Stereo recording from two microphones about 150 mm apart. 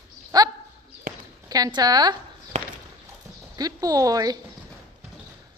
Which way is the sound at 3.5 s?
25° right (ahead or behind).